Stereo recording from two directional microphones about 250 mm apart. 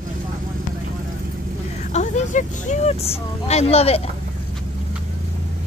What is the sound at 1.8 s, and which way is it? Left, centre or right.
Speech, left.